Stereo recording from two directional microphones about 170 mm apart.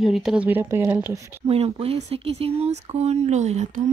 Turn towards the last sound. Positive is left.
turn(degrees=-40)  # may be behind; listen again after turning